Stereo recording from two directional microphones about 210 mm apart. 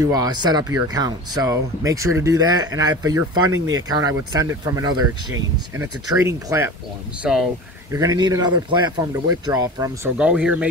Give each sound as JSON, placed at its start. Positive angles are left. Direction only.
{"t": 0.0, "sound": "speech", "side_deg": -15}
{"t": 7.2, "sound": "speech", "side_deg": -5}
{"t": 7.9, "sound": "speech", "side_deg": -15}
{"t": 10.1, "sound": "speech", "side_deg": -5}